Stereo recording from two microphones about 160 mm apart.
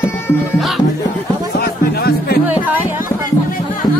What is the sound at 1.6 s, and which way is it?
Music, 75° left (ahead or behind).